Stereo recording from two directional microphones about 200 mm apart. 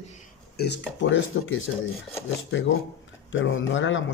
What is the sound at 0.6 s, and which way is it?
Speech, 60° left (ahead or behind).